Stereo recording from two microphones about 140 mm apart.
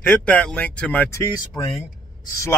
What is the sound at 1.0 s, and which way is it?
Speech, 20° left (ahead or behind).